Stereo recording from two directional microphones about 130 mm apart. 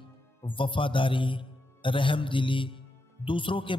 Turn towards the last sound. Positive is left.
turn(degrees=40)  # may be behind; listen again after turning